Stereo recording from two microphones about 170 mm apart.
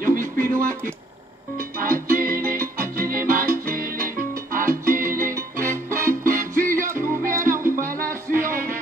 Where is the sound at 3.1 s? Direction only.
55° right (ahead or behind).